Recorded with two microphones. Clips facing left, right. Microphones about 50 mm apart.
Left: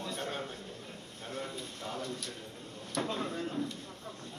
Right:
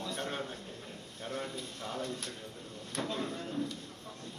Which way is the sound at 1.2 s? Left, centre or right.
Right.